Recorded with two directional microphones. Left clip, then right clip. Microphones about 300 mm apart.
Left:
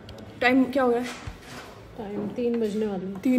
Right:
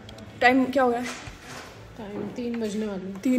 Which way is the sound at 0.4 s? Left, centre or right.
Centre.